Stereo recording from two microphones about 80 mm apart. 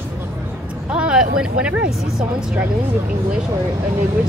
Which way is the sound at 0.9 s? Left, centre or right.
Centre.